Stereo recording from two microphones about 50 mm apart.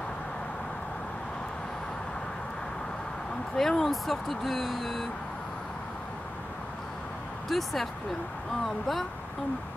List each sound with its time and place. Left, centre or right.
3.5 s speech: centre
7.4 s speech: centre